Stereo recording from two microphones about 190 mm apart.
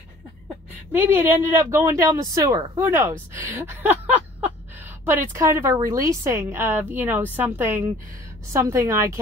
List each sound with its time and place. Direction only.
0.9 s speech: 10° right (ahead or behind)